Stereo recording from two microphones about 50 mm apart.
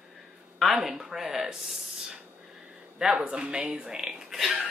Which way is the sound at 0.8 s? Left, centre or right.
Centre.